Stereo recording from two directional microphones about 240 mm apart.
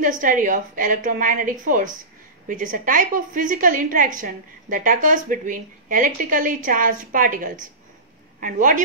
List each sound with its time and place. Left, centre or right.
0.0 s a woman's voice: right